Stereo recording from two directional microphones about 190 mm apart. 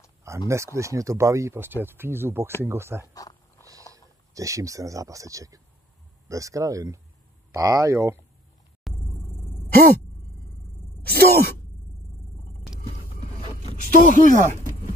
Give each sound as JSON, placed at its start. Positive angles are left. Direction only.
{"t": 0.5, "sound": "speech", "side_deg": -15}
{"t": 3.2, "sound": "a sound", "side_deg": 20}
{"t": 4.3, "sound": "speech", "side_deg": -15}
{"t": 8.9, "sound": "a sound", "side_deg": 0}
{"t": 9.7, "sound": "speech", "side_deg": -50}
{"t": 11.0, "sound": "speech", "side_deg": -55}
{"t": 13.9, "sound": "speech", "side_deg": -40}